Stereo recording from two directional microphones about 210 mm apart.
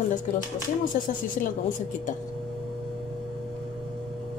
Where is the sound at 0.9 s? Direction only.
40° left (ahead or behind).